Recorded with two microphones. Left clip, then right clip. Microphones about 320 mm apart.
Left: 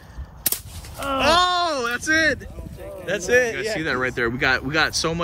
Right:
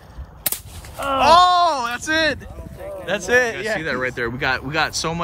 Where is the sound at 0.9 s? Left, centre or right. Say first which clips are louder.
Right 3 dB; right.